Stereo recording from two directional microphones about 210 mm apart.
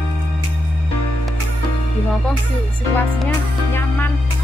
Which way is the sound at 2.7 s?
10° left (ahead or behind).